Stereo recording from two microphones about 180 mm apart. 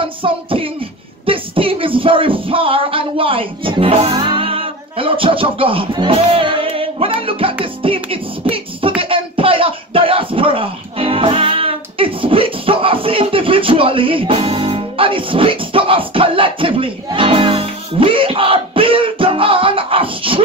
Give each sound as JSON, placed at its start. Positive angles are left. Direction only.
{"t": 0.0, "sound": "music", "side_deg": -30}
{"t": 1.2, "sound": "speech", "side_deg": -30}
{"t": 7.2, "sound": "music", "side_deg": -30}
{"t": 9.1, "sound": "a sound", "side_deg": -30}